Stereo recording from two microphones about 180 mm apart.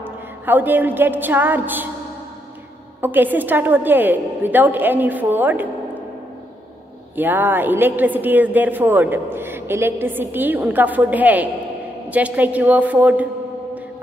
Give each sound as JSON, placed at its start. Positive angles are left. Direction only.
{"t": 0.0, "sound": "a sound", "side_deg": -10}
{"t": 3.0, "sound": "a woman's voice", "side_deg": -10}
{"t": 7.2, "sound": "a woman's voice", "side_deg": -10}